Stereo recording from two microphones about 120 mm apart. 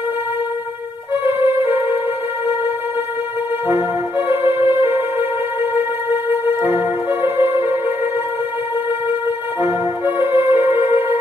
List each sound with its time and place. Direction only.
1.2 s music: 20° right (ahead or behind)
4.5 s music: 20° right (ahead or behind)
9.6 s music: 20° right (ahead or behind)